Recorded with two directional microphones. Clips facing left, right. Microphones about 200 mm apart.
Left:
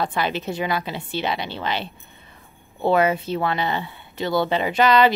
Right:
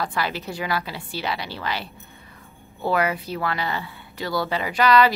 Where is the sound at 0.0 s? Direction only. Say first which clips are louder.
Left 3 dB; 20° left (ahead or behind).